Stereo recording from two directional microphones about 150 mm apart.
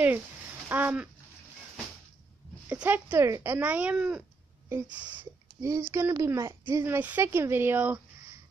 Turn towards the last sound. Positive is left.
turn(degrees=-15)  # may be behind; listen again after turning